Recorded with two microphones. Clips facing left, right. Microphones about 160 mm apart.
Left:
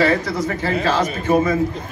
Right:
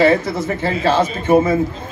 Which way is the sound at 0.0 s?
25° right (ahead or behind).